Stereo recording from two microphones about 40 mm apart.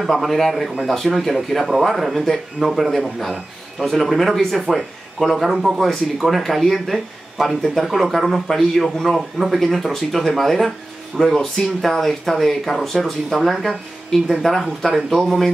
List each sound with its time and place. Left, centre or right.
0.0 s speech: centre
5.5 s speech: centre
5.8 s speech: centre